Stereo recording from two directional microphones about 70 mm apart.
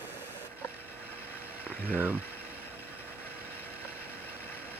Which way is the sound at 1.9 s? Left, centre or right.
Right.